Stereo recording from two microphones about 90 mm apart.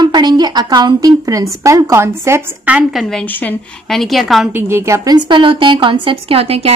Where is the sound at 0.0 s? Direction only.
55° right (ahead or behind); by 2.4 s 30° right (ahead or behind).